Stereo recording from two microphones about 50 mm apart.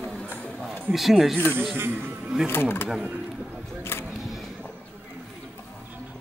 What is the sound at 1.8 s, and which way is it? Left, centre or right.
Speech, right.